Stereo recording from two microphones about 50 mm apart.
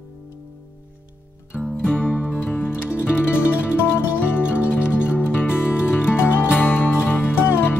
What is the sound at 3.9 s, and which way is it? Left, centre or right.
Music, left.